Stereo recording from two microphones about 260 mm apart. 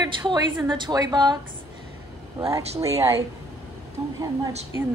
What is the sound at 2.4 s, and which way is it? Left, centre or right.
Speech, centre.